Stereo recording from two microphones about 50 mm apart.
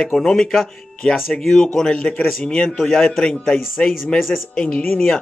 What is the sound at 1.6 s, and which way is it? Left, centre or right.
Speech, centre.